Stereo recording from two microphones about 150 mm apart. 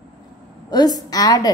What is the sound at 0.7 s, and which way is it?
Speech, 25° left (ahead or behind).